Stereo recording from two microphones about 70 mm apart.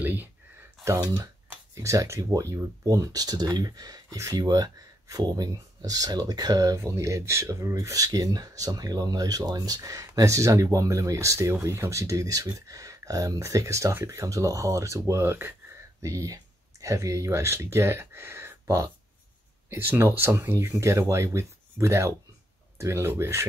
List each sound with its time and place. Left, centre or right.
0.0 s a sound: right
1.8 s speech: right
6.8 s speech: right
16.0 s speech: right